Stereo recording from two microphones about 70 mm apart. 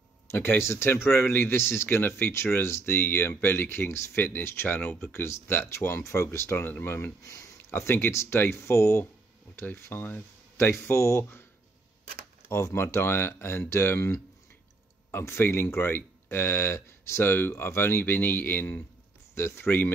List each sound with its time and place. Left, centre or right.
0.3 s speech: left
3.9 s speech: left
4.2 s speech: left
8.1 s speech: left
12.4 s speech: left